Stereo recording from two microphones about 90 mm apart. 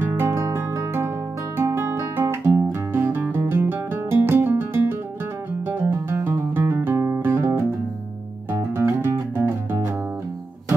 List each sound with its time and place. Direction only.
0.0 s music: 25° right (ahead or behind)